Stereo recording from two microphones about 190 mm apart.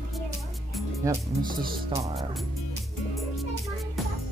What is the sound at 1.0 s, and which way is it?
Speech, 15° right (ahead or behind).